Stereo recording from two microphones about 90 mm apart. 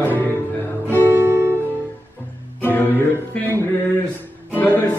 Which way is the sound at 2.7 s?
20° left (ahead or behind).